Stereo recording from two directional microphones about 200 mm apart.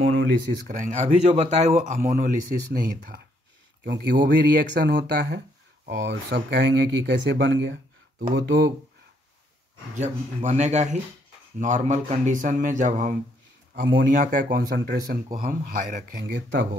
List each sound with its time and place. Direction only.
0.0 s speech: 80° right
0.7 s speech: 40° right (ahead or behind); by 8.7 s 60° right (ahead or behind)
9.9 s speech: 35° right (ahead or behind)
13.7 s speech: 60° right (ahead or behind)
14.1 s speech: 40° right (ahead or behind)
15.3 s speech: 45° right (ahead or behind)